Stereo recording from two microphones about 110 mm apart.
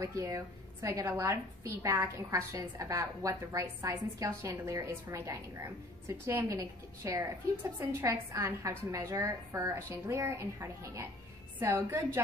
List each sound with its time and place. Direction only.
0.0 s a woman's voice: 30° right (ahead or behind)